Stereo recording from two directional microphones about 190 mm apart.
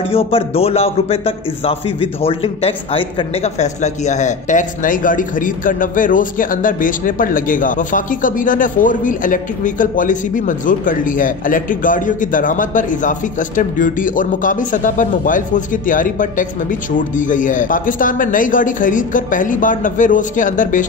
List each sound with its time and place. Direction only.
0.1 s a man's voice: 30° left (ahead or behind)